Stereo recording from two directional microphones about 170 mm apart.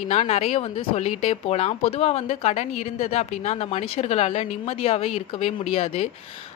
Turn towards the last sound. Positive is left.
turn(degrees=35)  # may be behind; listen again after turning